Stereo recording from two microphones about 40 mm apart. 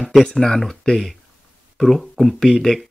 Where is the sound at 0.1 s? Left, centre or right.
Centre.